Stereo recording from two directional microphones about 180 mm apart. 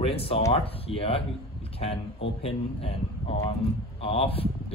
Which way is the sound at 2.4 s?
35° left (ahead or behind).